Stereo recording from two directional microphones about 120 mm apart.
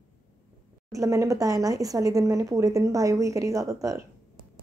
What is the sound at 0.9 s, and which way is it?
A woman's voice, 25° right (ahead or behind).